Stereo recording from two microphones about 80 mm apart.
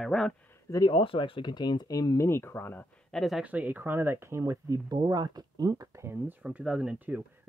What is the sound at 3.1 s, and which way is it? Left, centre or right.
Speech, centre.